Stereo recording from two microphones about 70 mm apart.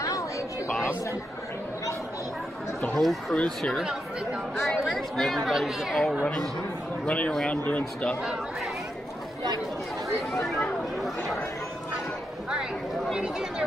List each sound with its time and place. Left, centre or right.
3.0 s speech: centre
3.3 s speech: centre
3.8 s speech: centre
4.6 s speech: centre
7.1 s speech: centre
10.3 s chatter: centre
13.1 s speech: centre